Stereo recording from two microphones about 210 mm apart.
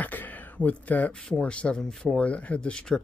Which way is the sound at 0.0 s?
10° left (ahead or behind).